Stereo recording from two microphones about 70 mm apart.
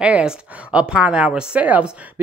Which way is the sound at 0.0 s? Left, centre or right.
Centre.